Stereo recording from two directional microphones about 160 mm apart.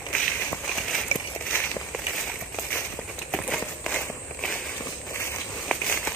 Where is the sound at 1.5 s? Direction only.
10° left (ahead or behind).